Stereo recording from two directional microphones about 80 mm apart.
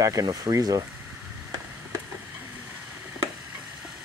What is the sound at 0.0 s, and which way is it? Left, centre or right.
Speech, right.